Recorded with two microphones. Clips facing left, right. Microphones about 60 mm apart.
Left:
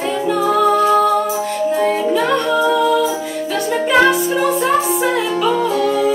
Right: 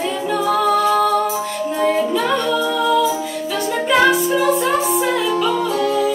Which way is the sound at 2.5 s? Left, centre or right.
Centre.